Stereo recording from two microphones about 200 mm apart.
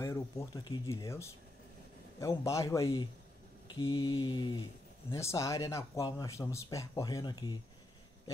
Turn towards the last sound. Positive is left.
turn(degrees=20)  # may be behind; listen again after turning